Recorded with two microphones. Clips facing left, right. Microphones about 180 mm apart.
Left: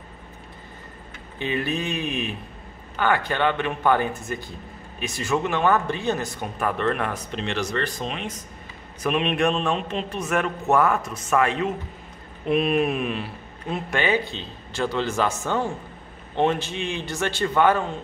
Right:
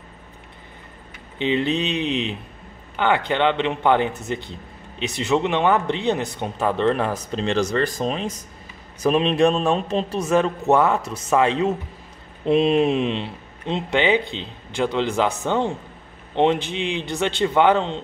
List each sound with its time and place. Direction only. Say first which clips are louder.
1.4 s a man's voice: right 5 dB; 20° right (ahead or behind)